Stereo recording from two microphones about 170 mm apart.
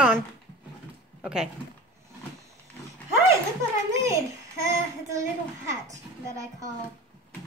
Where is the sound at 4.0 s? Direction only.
20° right (ahead or behind).